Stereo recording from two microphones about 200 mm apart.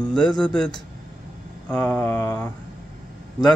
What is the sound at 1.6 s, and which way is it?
Mantra, 5° left (ahead or behind).